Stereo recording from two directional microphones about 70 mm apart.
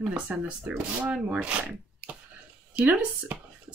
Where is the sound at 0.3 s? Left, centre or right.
Right.